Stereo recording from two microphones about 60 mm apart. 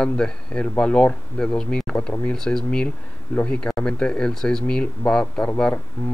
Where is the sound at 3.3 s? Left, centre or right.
Left.